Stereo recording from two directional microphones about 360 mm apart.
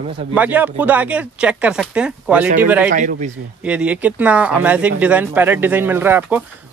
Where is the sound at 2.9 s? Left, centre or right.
Right.